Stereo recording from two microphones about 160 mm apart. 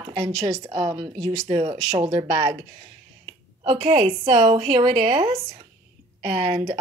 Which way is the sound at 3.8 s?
45° right (ahead or behind).